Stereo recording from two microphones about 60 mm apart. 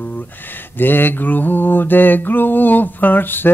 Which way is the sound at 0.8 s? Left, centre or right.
Left.